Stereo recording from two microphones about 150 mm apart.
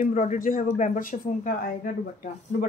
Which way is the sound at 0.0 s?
55° left (ahead or behind).